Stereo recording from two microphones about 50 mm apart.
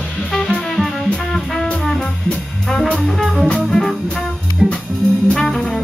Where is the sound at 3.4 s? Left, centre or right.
Centre.